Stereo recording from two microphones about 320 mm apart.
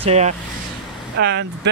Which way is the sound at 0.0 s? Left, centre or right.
Centre.